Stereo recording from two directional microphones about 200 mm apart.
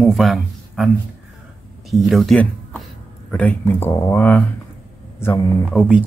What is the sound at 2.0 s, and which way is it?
Speech, centre (ahead or behind).